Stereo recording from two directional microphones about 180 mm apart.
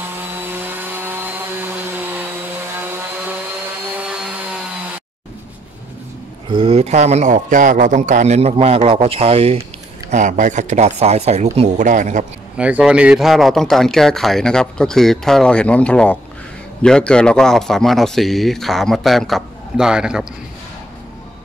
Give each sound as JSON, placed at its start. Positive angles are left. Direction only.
{"t": 0.5, "sound": "chainsaw", "side_deg": -10}
{"t": 3.9, "sound": "vacuum cleaner", "side_deg": -5}
{"t": 6.5, "sound": "a man's voice", "side_deg": -30}
{"t": 10.1, "sound": "speech", "side_deg": -45}
{"t": 12.5, "sound": "speech", "side_deg": -5}